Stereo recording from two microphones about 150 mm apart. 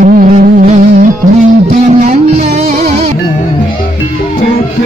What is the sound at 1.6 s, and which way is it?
Music, 50° right (ahead or behind).